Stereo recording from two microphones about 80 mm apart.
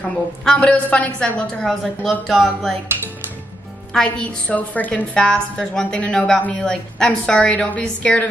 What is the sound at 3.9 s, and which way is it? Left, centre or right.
A woman's voice, centre.